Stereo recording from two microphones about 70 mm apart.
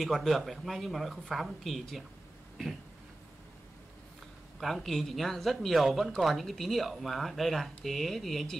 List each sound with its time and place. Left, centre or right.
0.0 s speech: centre
4.6 s speech: centre